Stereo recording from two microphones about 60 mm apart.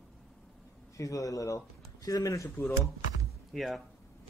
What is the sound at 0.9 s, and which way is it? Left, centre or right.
A man's voice, left.